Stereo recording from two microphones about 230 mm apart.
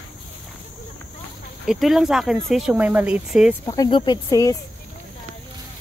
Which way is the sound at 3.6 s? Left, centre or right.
Centre.